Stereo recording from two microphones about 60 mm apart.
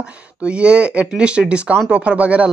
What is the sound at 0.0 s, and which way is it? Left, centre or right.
Speech, centre.